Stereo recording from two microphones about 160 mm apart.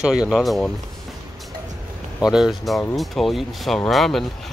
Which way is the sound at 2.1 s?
5° right (ahead or behind).